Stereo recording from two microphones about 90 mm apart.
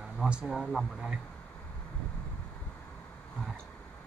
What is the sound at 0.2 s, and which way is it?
Speech, 10° right (ahead or behind).